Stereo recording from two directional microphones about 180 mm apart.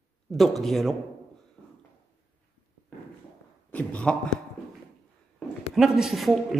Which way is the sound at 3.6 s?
5° left (ahead or behind).